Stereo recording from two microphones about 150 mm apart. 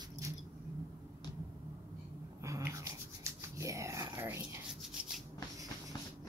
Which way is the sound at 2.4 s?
20° right (ahead or behind).